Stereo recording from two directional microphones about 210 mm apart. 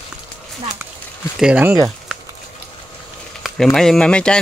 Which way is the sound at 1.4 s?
5° right (ahead or behind).